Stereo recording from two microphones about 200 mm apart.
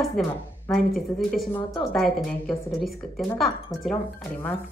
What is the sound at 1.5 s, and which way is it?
Speech, 20° left (ahead or behind).